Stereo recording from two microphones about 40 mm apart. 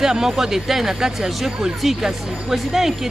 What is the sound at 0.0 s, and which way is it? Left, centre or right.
Speech, centre.